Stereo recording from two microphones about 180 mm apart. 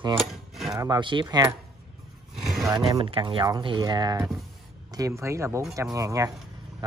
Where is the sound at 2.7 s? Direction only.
30° right (ahead or behind).